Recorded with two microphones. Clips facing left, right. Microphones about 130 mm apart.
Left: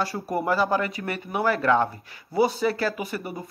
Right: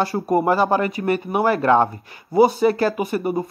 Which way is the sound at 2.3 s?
20° right (ahead or behind).